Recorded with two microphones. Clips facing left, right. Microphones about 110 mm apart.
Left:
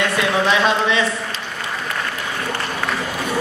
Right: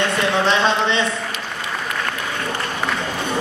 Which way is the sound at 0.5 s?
30° right (ahead or behind).